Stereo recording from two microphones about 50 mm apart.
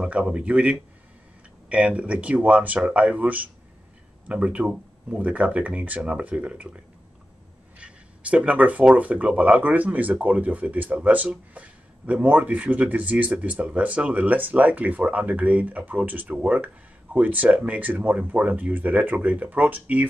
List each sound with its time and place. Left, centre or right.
0.0 s speech: right
7.8 s a sound: right
8.9 s speech: right